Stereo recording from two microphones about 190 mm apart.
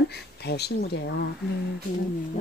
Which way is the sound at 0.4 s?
60° left (ahead or behind).